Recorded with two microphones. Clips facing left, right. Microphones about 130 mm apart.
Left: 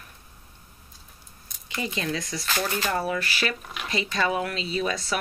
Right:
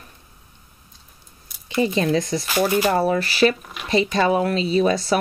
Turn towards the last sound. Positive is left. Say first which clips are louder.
# right 9 dB
turn(degrees=-35)  # may be behind; listen again after turning